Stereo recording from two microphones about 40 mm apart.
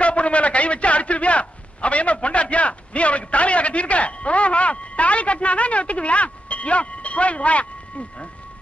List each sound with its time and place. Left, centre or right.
0.0 s a man's voice: left